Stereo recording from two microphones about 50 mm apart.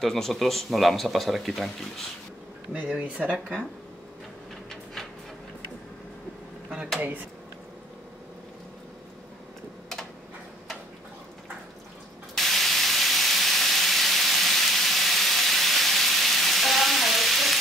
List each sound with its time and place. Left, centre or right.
0.0 s speech: centre
2.7 s speech: right
12.4 s steam: centre